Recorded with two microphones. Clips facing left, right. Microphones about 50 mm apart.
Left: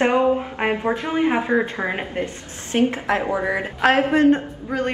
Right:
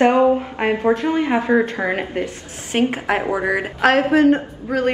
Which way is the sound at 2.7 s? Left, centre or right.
Right.